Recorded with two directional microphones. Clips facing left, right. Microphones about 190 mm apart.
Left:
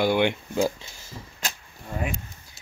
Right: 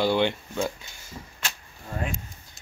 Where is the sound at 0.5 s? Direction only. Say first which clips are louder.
Left 7 dB; 30° left (ahead or behind).